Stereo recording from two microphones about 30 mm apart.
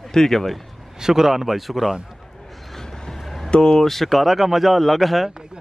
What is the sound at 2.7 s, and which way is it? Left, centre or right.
Vehicle, centre.